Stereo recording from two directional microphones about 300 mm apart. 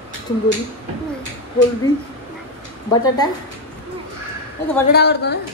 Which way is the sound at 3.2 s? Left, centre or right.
Centre.